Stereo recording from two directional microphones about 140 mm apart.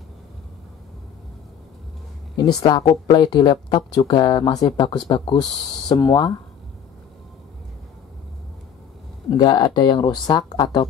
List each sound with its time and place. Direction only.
2.3 s speech: 30° left (ahead or behind)
9.3 s speech: 30° left (ahead or behind)